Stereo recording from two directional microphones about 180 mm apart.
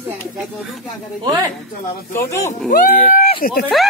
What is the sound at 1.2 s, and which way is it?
Speech, 20° right (ahead or behind).